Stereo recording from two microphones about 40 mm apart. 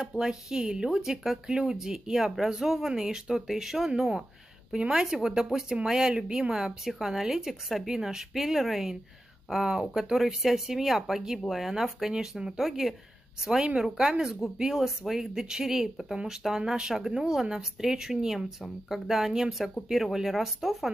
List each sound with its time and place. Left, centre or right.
0.2 s speech: centre
10.1 s speech: centre
12.1 s speech: centre
12.5 s speech: centre
13.6 s speech: right; by 20.9 s centre